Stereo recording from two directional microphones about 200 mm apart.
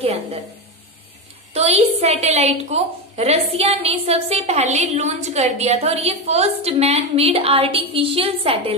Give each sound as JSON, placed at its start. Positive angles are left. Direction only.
{"t": 0.0, "sound": "a woman's voice", "side_deg": -30}
{"t": 1.5, "sound": "a woman's voice", "side_deg": -30}